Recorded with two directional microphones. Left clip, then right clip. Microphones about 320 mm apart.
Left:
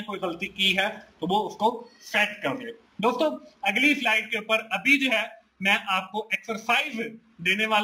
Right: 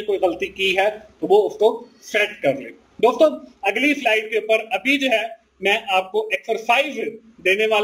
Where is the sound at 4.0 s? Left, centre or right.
Left.